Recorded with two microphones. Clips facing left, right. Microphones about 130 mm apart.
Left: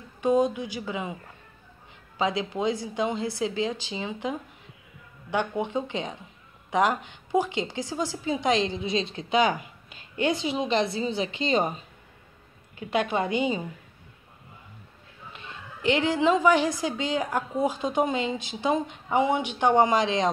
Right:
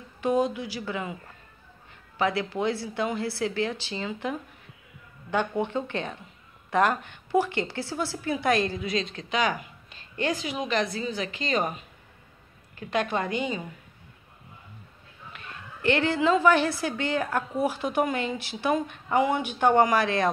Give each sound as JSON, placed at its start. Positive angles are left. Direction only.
{"t": 0.2, "sound": "a woman's voice", "side_deg": 20}
{"t": 2.1, "sound": "a woman's voice", "side_deg": 15}
{"t": 9.8, "sound": "a sound", "side_deg": -35}
{"t": 10.3, "sound": "a woman's voice", "side_deg": 25}
{"t": 15.8, "sound": "a woman's voice", "side_deg": 15}